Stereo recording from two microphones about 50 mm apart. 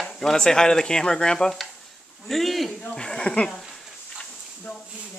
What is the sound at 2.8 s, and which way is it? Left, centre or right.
Speech, centre.